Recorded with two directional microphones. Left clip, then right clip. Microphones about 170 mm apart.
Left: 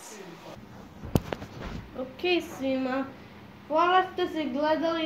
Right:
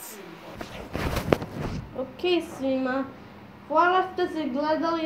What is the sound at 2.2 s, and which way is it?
A woman's voice, 15° left (ahead or behind).